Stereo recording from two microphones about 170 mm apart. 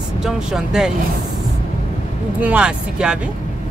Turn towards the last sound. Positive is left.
turn(degrees=-5)  # may be behind; listen again after turning